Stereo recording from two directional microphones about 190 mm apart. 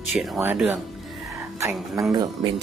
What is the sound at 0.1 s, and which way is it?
Speech, centre (ahead or behind).